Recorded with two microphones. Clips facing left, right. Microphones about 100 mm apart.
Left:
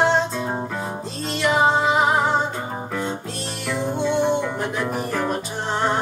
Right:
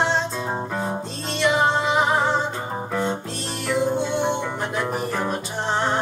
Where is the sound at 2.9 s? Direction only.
30° right (ahead or behind).